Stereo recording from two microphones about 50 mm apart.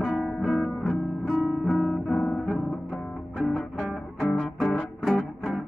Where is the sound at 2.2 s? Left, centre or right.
Left.